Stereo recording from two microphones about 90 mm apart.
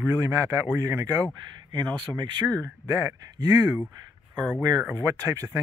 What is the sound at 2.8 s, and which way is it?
Speech, 40° right (ahead or behind).